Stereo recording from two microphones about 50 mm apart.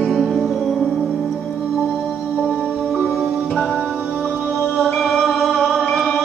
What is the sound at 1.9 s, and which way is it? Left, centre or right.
Music, centre.